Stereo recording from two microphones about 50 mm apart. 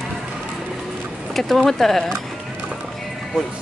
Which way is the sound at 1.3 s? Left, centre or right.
Centre.